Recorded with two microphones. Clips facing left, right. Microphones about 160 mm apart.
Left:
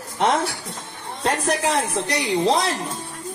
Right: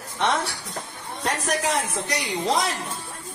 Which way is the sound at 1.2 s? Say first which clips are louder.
Left 4 dB; 30° left (ahead or behind).